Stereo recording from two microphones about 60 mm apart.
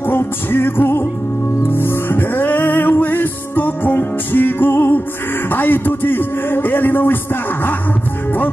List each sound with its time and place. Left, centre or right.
0.1 s music: left
5.5 s a man's voice: left